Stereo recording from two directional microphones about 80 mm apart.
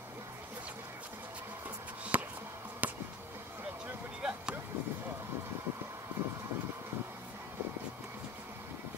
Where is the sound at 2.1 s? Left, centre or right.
Right.